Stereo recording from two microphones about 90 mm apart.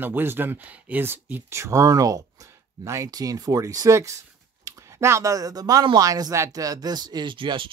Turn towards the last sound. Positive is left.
turn(degrees=-70)  # may be behind; listen again after turning